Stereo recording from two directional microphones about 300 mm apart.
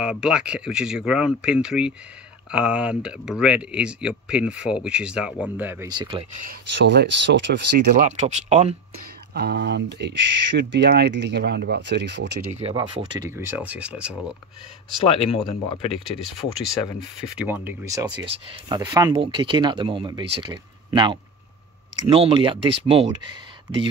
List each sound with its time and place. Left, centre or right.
0.0 s speech: centre
6.5 s speech: right
8.0 s speech: right
9.3 s speech: right
12.5 s speech: centre
15.0 s speech: centre
17.4 s speech: centre